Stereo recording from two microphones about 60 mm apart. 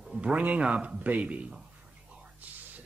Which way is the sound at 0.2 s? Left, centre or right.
Right.